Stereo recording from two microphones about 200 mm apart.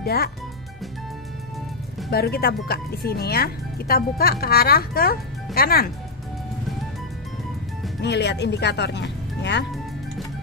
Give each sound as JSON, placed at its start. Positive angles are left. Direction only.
{"t": 0.0, "sound": "speech", "side_deg": 50}
{"t": 2.0, "sound": "speech", "side_deg": 50}
{"t": 8.0, "sound": "speech", "side_deg": 60}